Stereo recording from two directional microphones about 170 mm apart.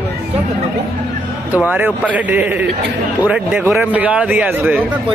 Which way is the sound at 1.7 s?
10° right (ahead or behind).